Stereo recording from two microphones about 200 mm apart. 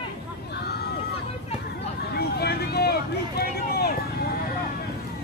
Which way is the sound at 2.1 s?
55° left (ahead or behind).